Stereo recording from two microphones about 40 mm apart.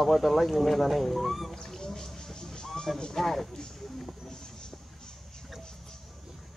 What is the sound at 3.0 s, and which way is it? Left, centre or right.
Speech, centre.